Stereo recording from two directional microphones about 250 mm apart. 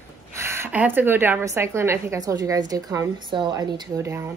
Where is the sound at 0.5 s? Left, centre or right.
Centre.